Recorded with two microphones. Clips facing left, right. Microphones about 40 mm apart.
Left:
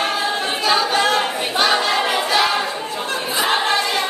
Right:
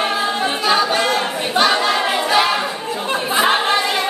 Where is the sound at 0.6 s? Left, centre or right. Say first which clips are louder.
Even; centre.